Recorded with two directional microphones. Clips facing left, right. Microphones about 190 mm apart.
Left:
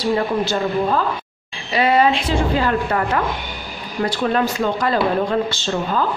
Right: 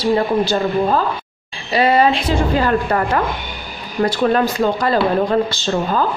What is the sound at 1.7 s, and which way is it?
A woman's voice, 35° right (ahead or behind).